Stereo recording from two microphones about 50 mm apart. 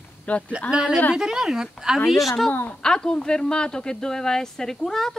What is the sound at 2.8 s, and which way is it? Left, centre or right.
Speech, centre.